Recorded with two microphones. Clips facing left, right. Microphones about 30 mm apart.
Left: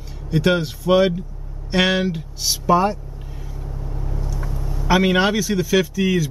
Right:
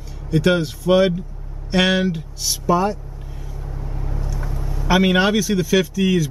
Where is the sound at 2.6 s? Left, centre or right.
Centre.